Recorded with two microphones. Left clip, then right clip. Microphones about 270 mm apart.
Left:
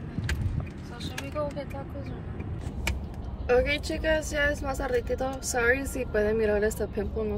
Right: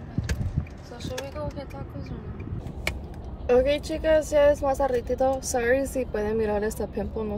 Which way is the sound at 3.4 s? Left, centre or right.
Centre.